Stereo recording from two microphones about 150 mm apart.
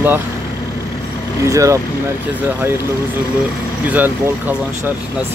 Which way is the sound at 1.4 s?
20° right (ahead or behind).